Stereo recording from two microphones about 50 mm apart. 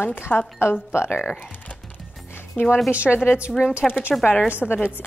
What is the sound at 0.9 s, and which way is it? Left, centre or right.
Speech, left.